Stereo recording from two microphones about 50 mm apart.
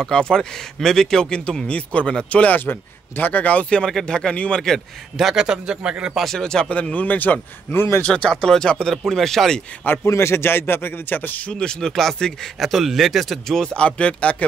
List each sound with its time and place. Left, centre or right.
0.0 s speech: centre
1.7 s speech: left
3.8 s speech: centre
5.1 s a man's voice: centre
6.1 s speech: centre
6.4 s speech: centre; by 7.3 s left
7.7 s speech: left
8.1 s speech: centre
8.9 s speech: centre
10.0 s speech: left
11.5 s speech: centre
12.5 s speech: centre
13.6 s speech: centre